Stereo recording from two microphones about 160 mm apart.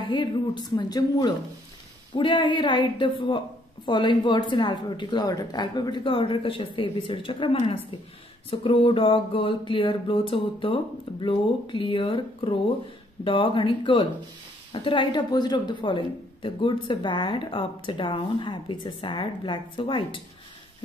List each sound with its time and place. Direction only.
0.7 s a woman's voice: 25° left (ahead or behind)